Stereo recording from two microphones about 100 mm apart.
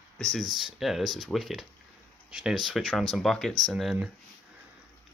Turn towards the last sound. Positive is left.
turn(degrees=0)  # may be behind; listen again after turning